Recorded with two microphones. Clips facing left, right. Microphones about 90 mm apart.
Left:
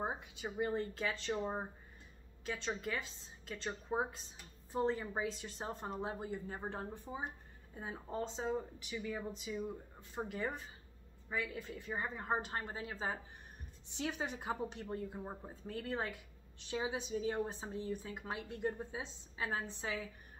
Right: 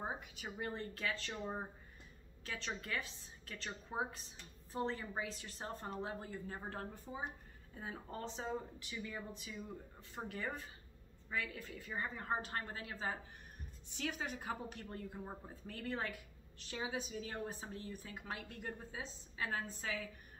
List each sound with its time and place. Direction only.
0.0 s a woman's voice: 20° left (ahead or behind)